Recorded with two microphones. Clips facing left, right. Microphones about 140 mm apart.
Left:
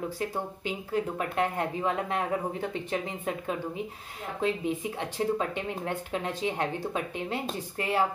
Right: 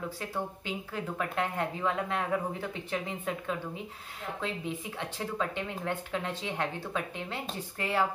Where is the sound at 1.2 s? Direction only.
20° left (ahead or behind).